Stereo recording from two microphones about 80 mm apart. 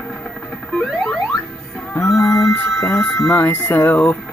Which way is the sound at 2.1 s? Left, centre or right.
Left.